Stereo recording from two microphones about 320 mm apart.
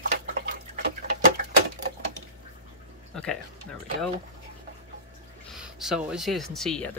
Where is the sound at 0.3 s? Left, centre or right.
Right.